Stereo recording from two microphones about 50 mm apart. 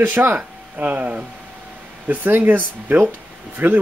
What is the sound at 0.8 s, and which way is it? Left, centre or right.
Speech, right.